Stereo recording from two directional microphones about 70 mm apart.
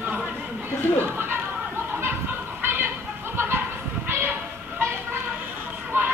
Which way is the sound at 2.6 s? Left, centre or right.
Right.